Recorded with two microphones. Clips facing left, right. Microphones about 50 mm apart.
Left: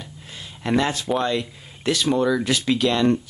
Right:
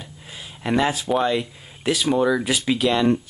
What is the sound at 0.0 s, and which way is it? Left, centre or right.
Speech, centre.